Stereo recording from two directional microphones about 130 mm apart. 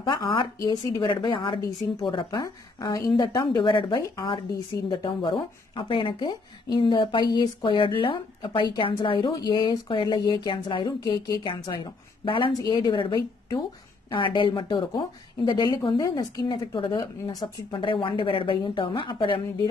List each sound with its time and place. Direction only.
0.1 s a woman's voice: 35° left (ahead or behind)